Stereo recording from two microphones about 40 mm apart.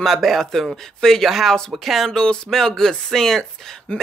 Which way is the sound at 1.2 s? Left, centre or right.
Centre.